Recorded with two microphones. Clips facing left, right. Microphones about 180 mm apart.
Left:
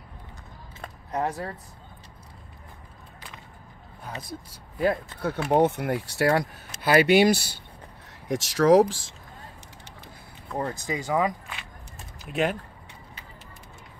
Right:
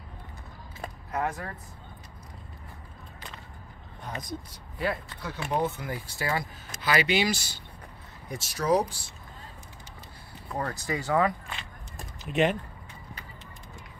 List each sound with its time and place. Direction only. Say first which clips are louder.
1.1 s speech: left 3 dB; 35° left (ahead or behind)
4.0 s speech: right 1 dB; 5° left (ahead or behind)
4.7 s speech: left 6 dB; 50° left (ahead or behind)
5.5 s speech: left 8 dB; 70° left (ahead or behind)
8.3 s speech: left 7 dB; 90° left
10.6 s speech: left 2 dB; 20° left (ahead or behind)
12.3 s speech: right 1 dB; centre (ahead or behind)